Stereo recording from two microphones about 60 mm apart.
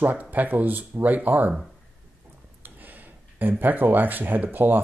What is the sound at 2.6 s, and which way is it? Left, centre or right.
Speech, right.